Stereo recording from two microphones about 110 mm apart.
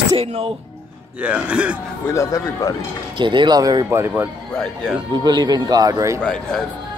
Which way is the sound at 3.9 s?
25° right (ahead or behind).